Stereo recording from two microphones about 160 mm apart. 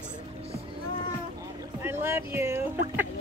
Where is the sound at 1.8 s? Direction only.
15° right (ahead or behind).